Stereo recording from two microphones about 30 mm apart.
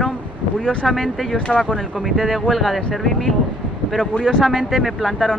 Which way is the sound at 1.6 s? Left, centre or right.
Left.